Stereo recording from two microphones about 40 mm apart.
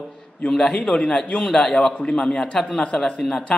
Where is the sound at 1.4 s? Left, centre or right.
Centre.